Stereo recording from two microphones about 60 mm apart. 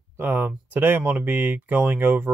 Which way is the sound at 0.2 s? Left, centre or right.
Right.